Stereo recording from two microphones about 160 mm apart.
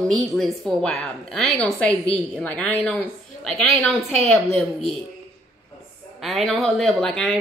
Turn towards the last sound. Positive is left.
turn(degrees=0)  # may be behind; listen again after turning